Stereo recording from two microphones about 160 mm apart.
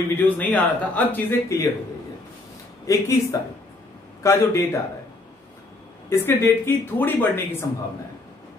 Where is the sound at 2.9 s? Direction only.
20° left (ahead or behind).